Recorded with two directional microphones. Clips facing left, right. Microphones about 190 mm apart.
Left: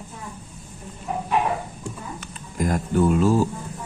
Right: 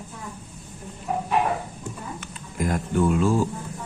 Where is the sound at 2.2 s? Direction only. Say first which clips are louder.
Left 2 dB; 40° left (ahead or behind).